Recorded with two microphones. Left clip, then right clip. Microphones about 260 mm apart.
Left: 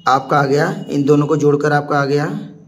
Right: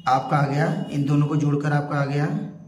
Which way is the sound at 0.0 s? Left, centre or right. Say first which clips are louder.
Left 7 dB; centre.